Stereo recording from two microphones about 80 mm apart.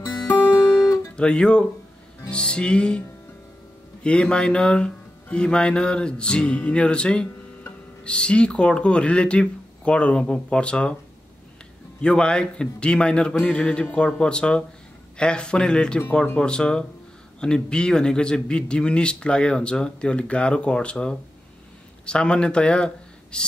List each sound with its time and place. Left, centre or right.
0.0 s guitar: left
0.7 s guitar: left
1.1 s a man's voice: centre
4.0 s a man's voice: centre
12.0 s a man's voice: centre